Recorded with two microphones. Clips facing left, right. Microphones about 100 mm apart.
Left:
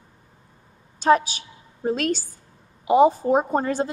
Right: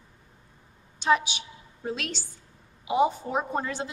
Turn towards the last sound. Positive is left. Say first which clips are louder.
# left 7 dB
turn(degrees=40)  # may be behind; listen again after turning